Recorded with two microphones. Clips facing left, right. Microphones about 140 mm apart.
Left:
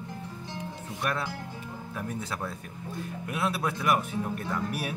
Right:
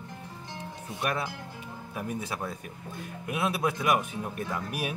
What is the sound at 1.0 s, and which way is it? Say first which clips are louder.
Speech: even; 15° right (ahead or behind).